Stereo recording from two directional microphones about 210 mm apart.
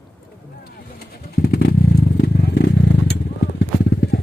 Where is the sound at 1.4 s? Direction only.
50° left (ahead or behind).